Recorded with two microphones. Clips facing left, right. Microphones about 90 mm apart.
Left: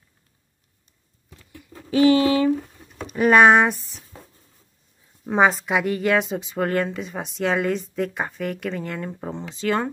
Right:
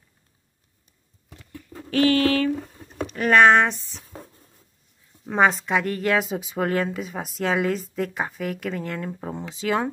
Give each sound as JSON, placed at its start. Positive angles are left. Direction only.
{"t": 1.9, "sound": "speech", "side_deg": 15}
{"t": 5.3, "sound": "speech", "side_deg": 5}